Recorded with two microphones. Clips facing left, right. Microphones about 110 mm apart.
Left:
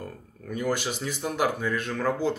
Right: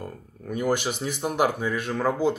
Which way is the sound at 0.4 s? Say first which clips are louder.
Right 3 dB; 15° right (ahead or behind).